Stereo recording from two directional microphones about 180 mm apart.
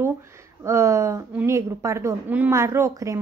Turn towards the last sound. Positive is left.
turn(degrees=-15)  # may be behind; listen again after turning